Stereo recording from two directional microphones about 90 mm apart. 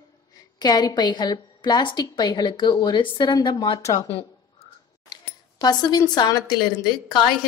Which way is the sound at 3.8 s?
40° left (ahead or behind).